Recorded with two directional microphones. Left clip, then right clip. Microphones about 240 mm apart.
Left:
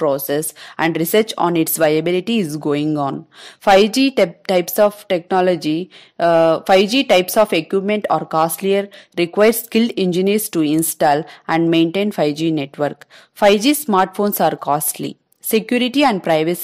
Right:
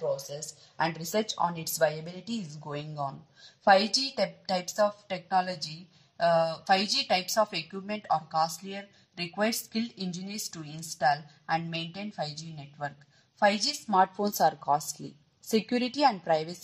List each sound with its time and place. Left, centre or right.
0.4 s a woman's voice: left